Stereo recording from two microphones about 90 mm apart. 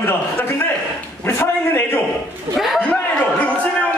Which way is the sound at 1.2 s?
25° left (ahead or behind).